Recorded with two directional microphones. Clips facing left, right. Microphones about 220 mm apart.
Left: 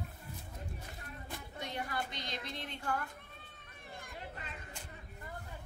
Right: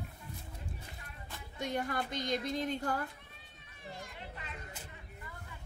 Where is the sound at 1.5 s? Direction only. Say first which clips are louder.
Right 5 dB; 50° right (ahead or behind).